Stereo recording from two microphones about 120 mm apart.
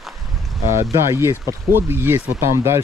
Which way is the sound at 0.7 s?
25° right (ahead or behind).